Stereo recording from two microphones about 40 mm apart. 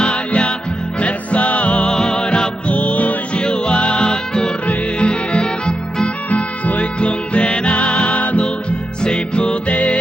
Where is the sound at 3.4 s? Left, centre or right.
Left.